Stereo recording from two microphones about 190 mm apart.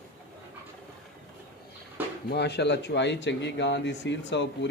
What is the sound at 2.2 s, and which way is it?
A man's voice, 60° left (ahead or behind).